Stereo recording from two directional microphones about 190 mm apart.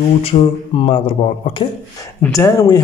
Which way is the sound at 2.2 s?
15° left (ahead or behind).